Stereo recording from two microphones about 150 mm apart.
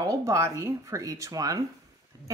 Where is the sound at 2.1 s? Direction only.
20° right (ahead or behind).